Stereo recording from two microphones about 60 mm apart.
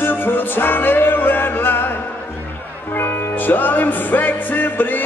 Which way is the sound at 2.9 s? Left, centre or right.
Left.